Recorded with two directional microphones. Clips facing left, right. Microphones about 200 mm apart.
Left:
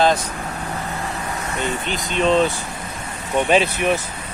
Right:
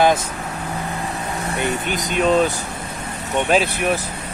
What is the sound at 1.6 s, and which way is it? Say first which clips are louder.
Speech: right 2 dB; 15° right (ahead or behind).